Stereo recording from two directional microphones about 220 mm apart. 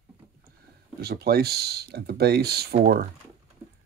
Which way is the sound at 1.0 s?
45° right (ahead or behind).